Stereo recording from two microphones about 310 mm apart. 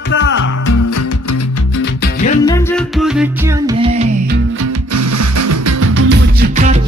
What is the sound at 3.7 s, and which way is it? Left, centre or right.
Music, centre.